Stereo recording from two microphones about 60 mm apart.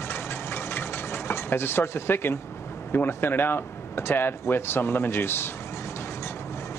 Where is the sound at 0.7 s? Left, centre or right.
Left.